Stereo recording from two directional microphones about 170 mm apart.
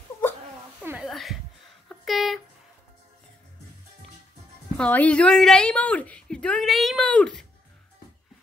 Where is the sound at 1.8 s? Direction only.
Centre (ahead or behind).